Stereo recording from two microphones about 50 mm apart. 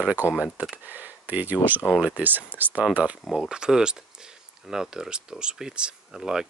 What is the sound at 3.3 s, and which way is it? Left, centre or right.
Speech, centre.